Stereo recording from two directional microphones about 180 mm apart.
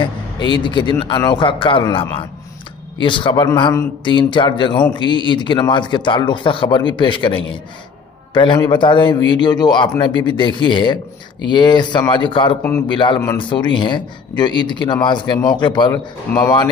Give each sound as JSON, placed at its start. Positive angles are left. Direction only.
{"t": 0.5, "sound": "a man's voice", "side_deg": 25}